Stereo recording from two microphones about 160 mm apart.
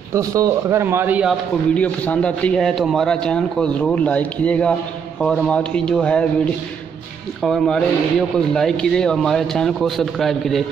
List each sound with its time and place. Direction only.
0.1 s speech: 20° right (ahead or behind)
1.7 s a man's voice: 10° left (ahead or behind)